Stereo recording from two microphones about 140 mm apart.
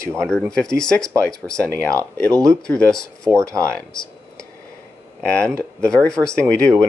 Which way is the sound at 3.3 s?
20° right (ahead or behind).